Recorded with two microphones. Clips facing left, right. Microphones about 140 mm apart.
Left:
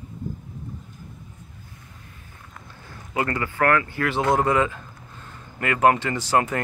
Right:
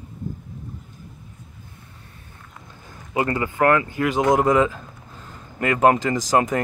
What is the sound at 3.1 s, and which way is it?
Speech, 20° right (ahead or behind).